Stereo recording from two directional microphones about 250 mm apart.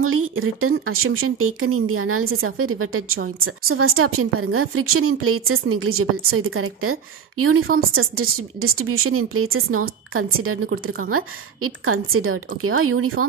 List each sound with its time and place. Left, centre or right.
0.0 s speech: right
10.7 s speech: right
11.1 s speech: right